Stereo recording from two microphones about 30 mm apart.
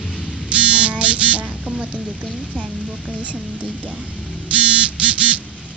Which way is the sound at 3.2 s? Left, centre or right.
Right.